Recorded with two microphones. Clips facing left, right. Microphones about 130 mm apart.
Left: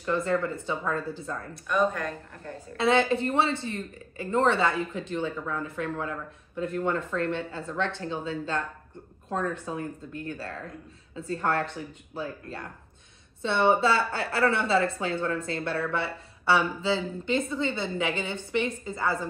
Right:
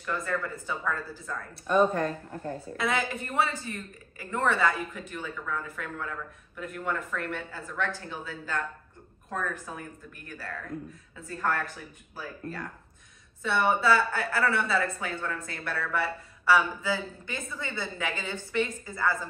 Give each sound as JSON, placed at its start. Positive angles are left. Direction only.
{"t": 0.0, "sound": "speech", "side_deg": 25}
{"t": 1.5, "sound": "speech", "side_deg": -30}
{"t": 2.8, "sound": "speech", "side_deg": 30}